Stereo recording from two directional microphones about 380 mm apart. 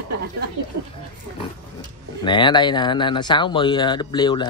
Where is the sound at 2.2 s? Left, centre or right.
Centre.